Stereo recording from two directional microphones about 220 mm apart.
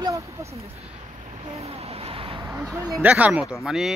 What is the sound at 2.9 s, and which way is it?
Speech, 5° right (ahead or behind).